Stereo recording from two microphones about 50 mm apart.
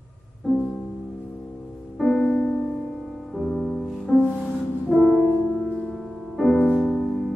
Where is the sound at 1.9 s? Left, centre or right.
Centre.